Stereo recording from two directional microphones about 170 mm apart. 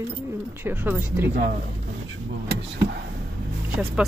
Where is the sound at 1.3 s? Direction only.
50° right (ahead or behind).